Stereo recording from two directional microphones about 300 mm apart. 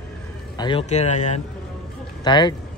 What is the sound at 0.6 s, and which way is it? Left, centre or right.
Speech, centre.